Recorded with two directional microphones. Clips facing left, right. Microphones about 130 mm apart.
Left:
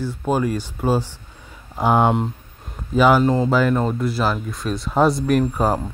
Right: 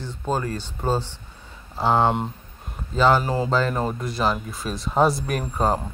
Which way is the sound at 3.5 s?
10° left (ahead or behind).